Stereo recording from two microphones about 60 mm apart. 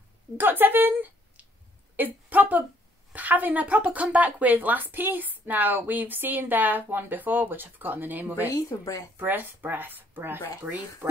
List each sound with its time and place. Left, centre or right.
0.4 s a woman's voice: right
8.5 s speech: left
9.1 s speech: right